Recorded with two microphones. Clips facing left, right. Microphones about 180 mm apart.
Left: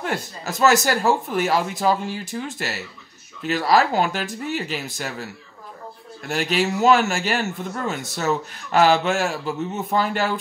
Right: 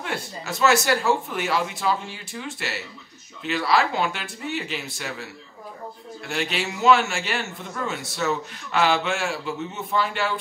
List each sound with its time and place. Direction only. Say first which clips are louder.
0.0 s a man's voice: left 4 dB; 40° left (ahead or behind)